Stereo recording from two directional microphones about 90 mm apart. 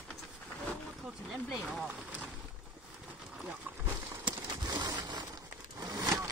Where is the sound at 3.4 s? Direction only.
10° right (ahead or behind).